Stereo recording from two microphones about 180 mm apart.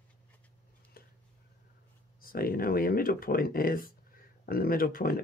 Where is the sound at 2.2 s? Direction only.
55° left (ahead or behind).